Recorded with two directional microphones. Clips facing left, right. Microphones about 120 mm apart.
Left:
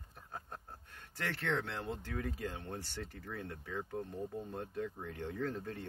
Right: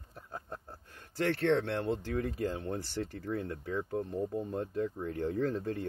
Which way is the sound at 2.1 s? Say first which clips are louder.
Right 7 dB; 35° right (ahead or behind).